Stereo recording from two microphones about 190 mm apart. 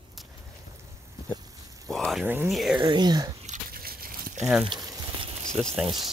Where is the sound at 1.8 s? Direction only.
Centre (ahead or behind).